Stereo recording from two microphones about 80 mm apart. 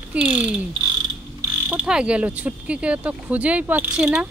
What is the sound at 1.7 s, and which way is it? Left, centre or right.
Speech, centre.